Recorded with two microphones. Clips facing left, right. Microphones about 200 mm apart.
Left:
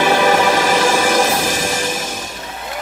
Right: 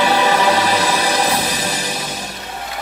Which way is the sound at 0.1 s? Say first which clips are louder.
Left 2 dB; 45° left (ahead or behind).